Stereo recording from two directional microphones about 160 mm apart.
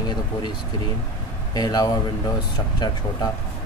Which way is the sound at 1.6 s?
25° left (ahead or behind).